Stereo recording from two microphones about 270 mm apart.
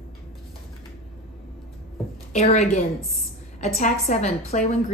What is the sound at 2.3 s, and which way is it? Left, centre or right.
A woman's voice, left.